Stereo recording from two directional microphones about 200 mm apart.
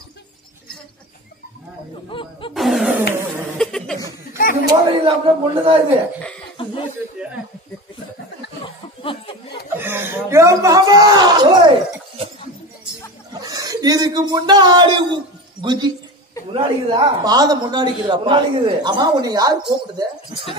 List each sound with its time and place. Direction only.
2.0 s music: 25° left (ahead or behind)
2.5 s roaring cats: centre (ahead or behind)
3.5 s chuckle: centre (ahead or behind)
4.4 s a sound: 45° left (ahead or behind)
4.6 s a man's voice: 25° right (ahead or behind)
6.6 s chuckle: 25° left (ahead or behind)
9.0 s a sound: 25° left (ahead or behind)
9.8 s speech: 10° right (ahead or behind)
13.3 s a man's voice: 20° right (ahead or behind)